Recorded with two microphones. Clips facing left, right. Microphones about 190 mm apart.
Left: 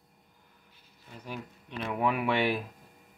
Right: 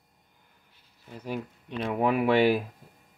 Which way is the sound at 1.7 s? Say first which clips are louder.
Right 3 dB; 35° right (ahead or behind).